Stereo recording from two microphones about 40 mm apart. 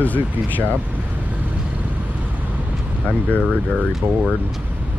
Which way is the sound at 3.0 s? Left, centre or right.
Left.